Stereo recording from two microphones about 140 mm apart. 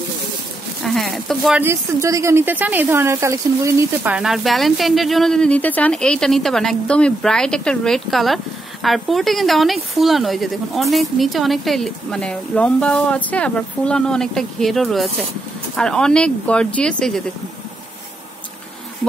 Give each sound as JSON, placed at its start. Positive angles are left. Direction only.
{"t": 0.8, "sound": "speech", "side_deg": 0}
{"t": 1.6, "sound": "speech", "side_deg": -20}
{"t": 4.1, "sound": "speech", "side_deg": -5}